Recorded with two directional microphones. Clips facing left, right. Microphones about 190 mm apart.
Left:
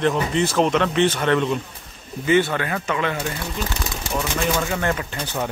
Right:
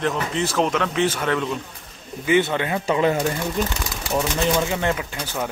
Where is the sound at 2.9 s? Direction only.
35° right (ahead or behind).